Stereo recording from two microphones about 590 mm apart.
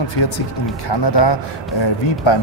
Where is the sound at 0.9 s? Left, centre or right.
Left.